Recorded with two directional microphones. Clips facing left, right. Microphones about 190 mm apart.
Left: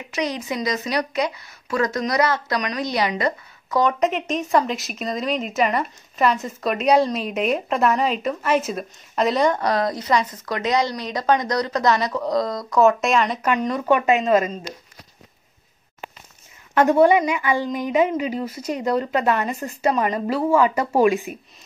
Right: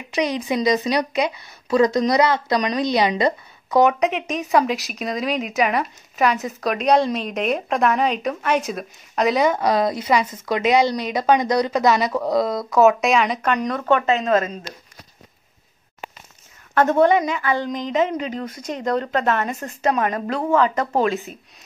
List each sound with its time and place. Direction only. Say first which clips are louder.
0.5 s a woman's voice: right 5 dB; 15° right (ahead or behind)
4.0 s a woman's voice: even; centre (ahead or behind)
16.7 s a woman's voice: left 1 dB; 10° left (ahead or behind)